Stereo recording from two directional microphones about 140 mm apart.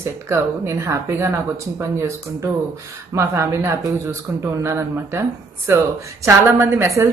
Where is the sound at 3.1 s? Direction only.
20° right (ahead or behind).